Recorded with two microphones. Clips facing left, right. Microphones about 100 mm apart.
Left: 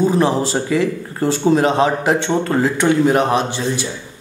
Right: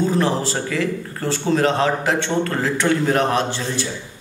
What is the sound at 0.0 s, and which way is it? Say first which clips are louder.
A man's voice: left 4 dB; 15° left (ahead or behind).